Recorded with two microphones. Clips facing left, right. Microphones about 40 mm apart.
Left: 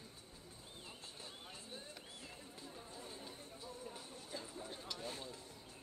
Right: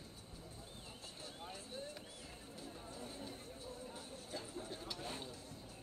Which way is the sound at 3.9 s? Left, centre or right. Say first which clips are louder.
Right 1 dB; right.